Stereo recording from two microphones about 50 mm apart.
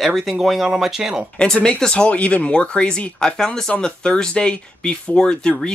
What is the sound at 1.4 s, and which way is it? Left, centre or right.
Speech, centre.